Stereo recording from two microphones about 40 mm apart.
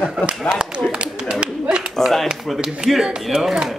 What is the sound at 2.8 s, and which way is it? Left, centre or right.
Speech, right.